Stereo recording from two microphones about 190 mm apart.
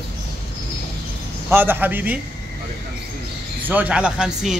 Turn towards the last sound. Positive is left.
turn(degrees=-5)  # may be behind; listen again after turning